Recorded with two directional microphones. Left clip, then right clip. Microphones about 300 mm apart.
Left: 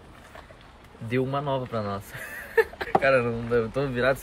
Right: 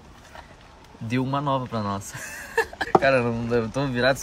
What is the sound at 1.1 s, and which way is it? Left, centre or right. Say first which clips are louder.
Speech: right 2 dB; centre.